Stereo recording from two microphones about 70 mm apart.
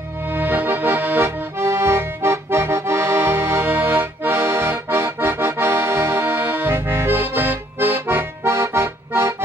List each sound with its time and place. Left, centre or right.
0.3 s accordion: right